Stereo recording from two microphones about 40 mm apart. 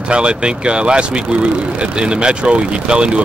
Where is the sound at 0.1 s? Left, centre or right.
Right.